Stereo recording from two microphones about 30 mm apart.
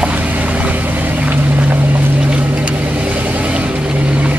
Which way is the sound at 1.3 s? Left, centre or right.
Right.